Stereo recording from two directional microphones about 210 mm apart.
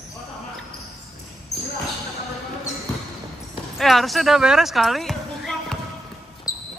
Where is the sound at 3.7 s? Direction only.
Centre (ahead or behind).